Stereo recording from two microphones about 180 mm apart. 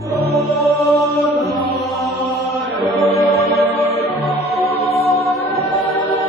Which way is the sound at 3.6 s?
35° right (ahead or behind).